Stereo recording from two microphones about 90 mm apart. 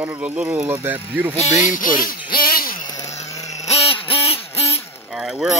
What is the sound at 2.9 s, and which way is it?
Chainsaw, 40° left (ahead or behind).